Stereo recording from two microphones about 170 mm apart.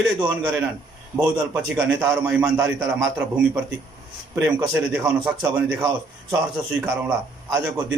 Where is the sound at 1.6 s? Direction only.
Centre (ahead or behind).